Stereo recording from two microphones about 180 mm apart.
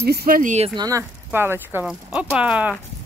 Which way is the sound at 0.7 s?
20° right (ahead or behind).